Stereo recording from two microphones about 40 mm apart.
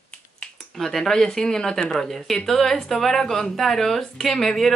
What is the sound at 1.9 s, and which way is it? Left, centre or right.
Speech, centre.